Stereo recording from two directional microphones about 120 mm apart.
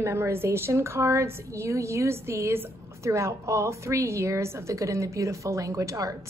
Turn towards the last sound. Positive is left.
turn(degrees=-25)  # may be behind; listen again after turning